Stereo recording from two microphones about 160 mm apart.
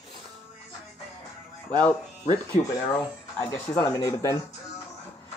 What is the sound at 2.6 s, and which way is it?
Speech, 45° left (ahead or behind).